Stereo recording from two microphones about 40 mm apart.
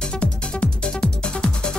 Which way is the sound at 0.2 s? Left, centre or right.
Left.